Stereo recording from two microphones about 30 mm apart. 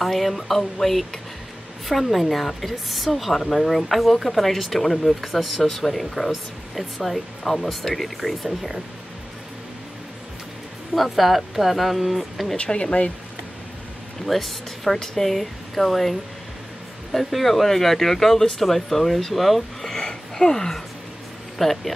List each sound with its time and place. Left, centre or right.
0.0 s speech: centre
3.3 s speech: centre
8.5 s speech: centre
11.0 s speech: centre
14.2 s speech: centre
20.0 s a sound: left
21.5 s speech: centre